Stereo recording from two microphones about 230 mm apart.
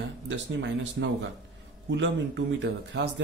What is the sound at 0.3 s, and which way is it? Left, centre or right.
Speech, right.